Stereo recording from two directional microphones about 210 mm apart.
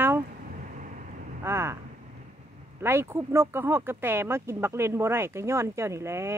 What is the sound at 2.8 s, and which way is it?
Speech, 10° right (ahead or behind).